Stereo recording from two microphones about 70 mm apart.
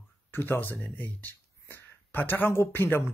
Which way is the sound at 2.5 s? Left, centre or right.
Left.